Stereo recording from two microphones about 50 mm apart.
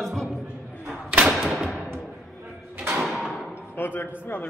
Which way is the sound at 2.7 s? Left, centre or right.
Right.